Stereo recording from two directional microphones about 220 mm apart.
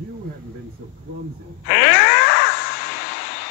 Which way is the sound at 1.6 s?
45° left (ahead or behind).